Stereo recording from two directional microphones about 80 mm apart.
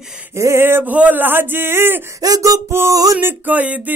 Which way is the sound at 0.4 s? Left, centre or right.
Right.